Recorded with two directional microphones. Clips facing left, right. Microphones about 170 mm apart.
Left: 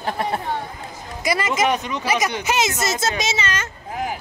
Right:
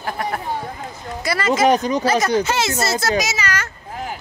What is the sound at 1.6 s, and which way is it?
Speech, 35° right (ahead or behind).